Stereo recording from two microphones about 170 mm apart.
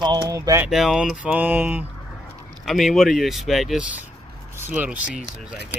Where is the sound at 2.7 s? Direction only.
Centre (ahead or behind).